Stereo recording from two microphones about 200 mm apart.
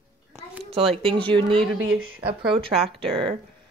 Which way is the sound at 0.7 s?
30° right (ahead or behind).